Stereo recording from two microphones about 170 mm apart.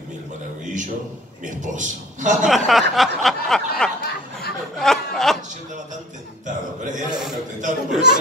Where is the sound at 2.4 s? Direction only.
Centre (ahead or behind).